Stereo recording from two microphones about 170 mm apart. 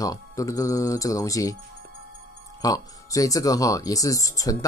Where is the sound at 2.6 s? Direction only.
20° left (ahead or behind).